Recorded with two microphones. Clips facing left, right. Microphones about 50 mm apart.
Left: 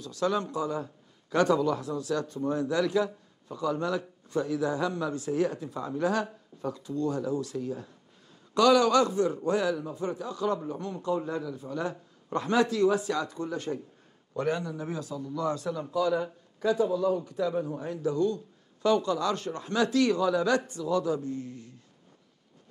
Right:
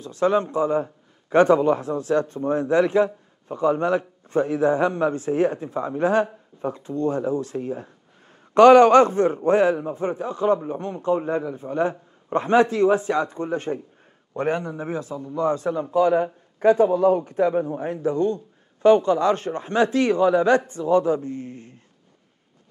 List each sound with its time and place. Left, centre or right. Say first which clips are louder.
0.0 s a man's voice: right 8 dB; right